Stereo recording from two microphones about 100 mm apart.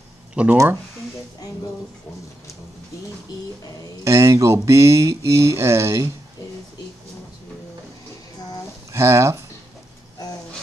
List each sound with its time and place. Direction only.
0.3 s speech: 10° right (ahead or behind)
4.0 s speech: 30° right (ahead or behind)
8.9 s speech: 30° right (ahead or behind)